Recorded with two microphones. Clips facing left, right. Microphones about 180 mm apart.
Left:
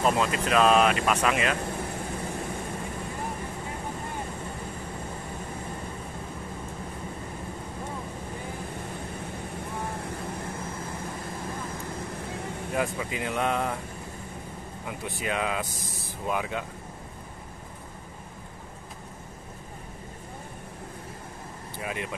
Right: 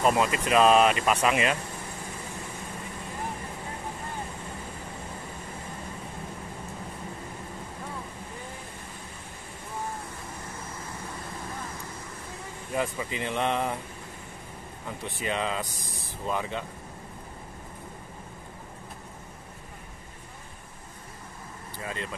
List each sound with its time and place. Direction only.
0.0 s speech: 5° right (ahead or behind)
12.7 s speech: 5° left (ahead or behind)
14.9 s speech: 5° left (ahead or behind)
21.7 s speech: 15° left (ahead or behind)